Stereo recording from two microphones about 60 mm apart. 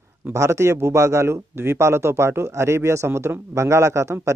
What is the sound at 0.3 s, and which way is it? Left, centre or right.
A man's voice, right.